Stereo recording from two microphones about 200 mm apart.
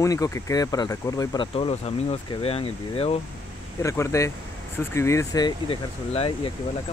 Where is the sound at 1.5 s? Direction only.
30° left (ahead or behind).